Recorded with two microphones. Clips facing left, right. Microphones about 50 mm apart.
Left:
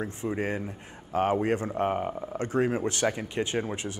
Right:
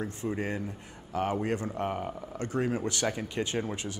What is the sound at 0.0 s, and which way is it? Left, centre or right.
Speech, left.